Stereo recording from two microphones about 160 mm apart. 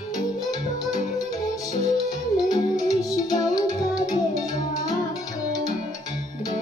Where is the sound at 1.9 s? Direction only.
25° left (ahead or behind).